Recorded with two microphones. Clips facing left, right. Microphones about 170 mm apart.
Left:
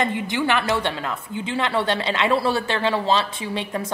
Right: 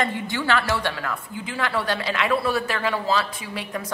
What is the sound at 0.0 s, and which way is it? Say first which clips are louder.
A woman's voice: left 3 dB; 20° left (ahead or behind).